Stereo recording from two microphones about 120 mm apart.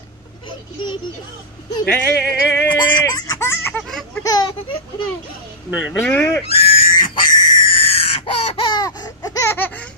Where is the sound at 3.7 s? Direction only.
5° left (ahead or behind).